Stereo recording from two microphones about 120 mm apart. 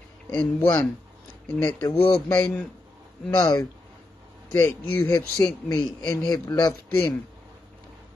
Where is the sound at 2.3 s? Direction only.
20° left (ahead or behind).